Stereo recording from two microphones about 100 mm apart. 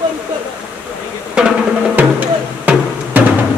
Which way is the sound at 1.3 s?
15° right (ahead or behind).